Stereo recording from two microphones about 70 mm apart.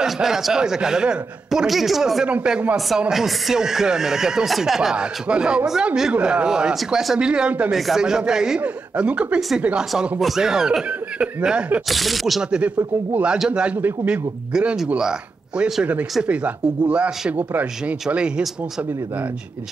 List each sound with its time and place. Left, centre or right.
0.0 s speech: centre
2.2 s speech: centre
7.7 s speech: centre
11.9 s speech: centre
12.4 s speech: centre
18.0 s speech: centre